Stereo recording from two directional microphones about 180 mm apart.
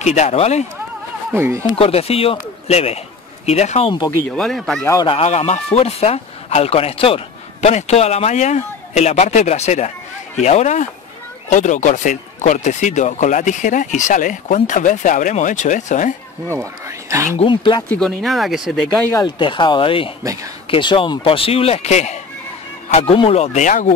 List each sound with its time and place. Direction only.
0.0 s a man's voice: 40° left (ahead or behind)
1.3 s speech: 15° right (ahead or behind)
1.8 s a man's voice: 35° left (ahead or behind)
4.4 s speech: centre (ahead or behind)
5.0 s a man's voice: 35° left (ahead or behind)
16.5 s speech: 15° right (ahead or behind)
17.4 s speech: 25° left (ahead or behind)
17.8 s speech: 5° left (ahead or behind)
19.0 s a man's voice: 20° left (ahead or behind); by 23.9 s 45° left (ahead or behind)